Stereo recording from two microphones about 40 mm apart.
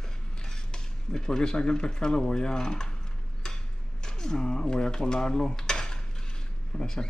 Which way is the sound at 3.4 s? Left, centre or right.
Centre.